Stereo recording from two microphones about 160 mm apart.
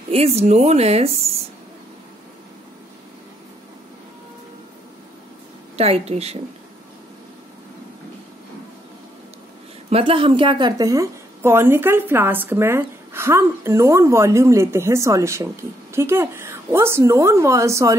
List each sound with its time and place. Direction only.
0.1 s a woman's voice: 40° right (ahead or behind)
5.8 s a woman's voice: 40° right (ahead or behind)
9.8 s a woman's voice: 35° right (ahead or behind); by 17.9 s 20° right (ahead or behind)